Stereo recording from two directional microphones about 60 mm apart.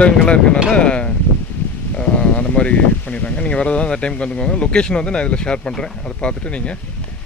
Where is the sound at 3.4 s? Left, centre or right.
Left.